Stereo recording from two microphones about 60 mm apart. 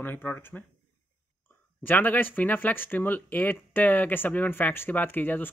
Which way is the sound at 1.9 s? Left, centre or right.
Left.